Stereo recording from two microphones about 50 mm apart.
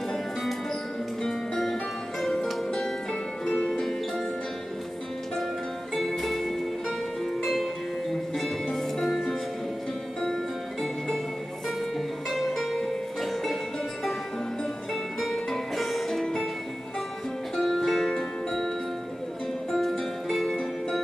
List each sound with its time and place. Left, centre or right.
0.1 s music: centre
3.4 s music: centre
5.9 s music: centre
12.3 s music: centre
15.1 s music: centre
17.6 s music: centre
19.7 s music: centre